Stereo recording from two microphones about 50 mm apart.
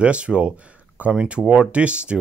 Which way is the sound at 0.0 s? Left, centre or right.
Right.